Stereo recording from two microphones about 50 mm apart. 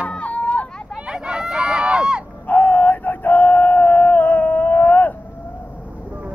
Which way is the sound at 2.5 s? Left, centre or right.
Left.